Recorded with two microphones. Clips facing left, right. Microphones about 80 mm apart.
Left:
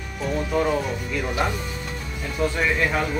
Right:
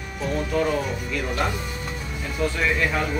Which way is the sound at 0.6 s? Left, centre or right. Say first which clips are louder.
Left 1 dB; centre.